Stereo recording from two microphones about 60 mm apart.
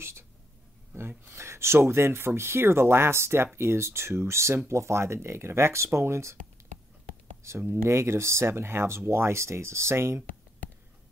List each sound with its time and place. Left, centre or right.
0.9 s speech: right
7.6 s speech: right